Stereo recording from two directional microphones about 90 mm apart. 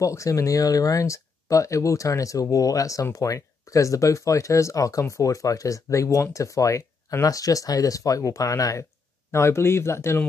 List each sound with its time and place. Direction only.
0.0 s speech: 35° left (ahead or behind)